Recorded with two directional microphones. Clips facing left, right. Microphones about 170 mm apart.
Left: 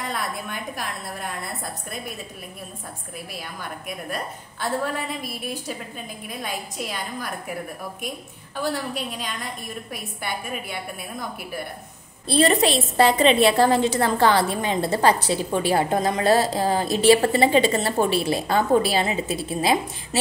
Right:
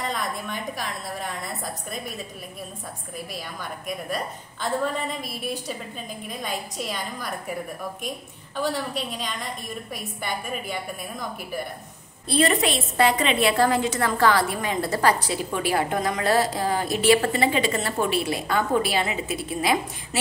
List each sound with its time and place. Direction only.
0.1 s a woman's voice: 5° left (ahead or behind)
3.3 s a woman's voice: 5° left (ahead or behind)
8.9 s a woman's voice: 5° left (ahead or behind)
12.3 s a woman's voice: 30° left (ahead or behind)